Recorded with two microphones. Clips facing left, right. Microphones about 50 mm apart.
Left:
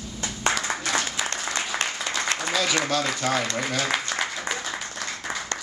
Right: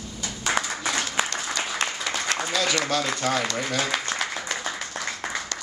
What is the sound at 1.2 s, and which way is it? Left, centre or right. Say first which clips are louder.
Applause: right 3 dB; right.